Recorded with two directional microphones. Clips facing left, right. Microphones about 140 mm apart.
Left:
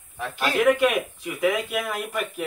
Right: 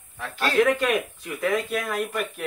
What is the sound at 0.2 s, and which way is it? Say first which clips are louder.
Speech: right 1 dB; 15° left (ahead or behind).